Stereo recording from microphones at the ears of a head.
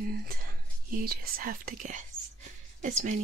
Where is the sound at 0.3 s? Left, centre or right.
Right.